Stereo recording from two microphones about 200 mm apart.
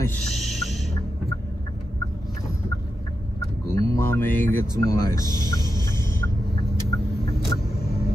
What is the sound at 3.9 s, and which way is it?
Speech, 10° left (ahead or behind).